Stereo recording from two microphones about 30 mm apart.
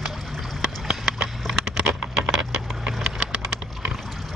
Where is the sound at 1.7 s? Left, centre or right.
Centre.